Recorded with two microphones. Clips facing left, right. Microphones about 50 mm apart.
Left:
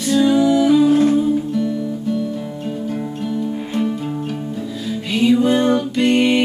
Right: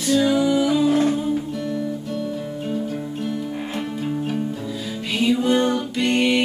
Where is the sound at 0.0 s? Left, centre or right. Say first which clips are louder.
Left 4 dB; centre.